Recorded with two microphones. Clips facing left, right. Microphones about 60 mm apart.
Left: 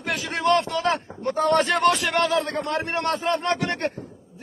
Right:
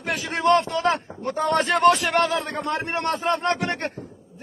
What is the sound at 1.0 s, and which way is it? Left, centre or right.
Speech, centre.